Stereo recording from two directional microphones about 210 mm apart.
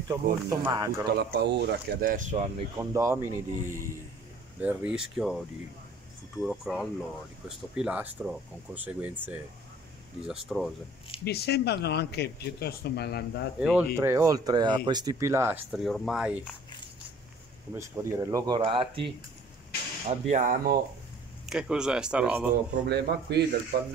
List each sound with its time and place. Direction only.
0.1 s speech: 15° right (ahead or behind)
1.1 s speech: 50° right (ahead or behind); by 2.5 s 35° right (ahead or behind)
2.8 s speech: 15° right (ahead or behind)
6.4 s speech: centre (ahead or behind)
11.2 s speech: 50° left (ahead or behind)
13.6 s speech: 5° right (ahead or behind)
15.7 s speech: centre (ahead or behind)
17.7 s speech: 15° right (ahead or behind)
20.1 s speech: 35° right (ahead or behind)
21.5 s speech: 5° right (ahead or behind)
22.8 s speech: 50° right (ahead or behind)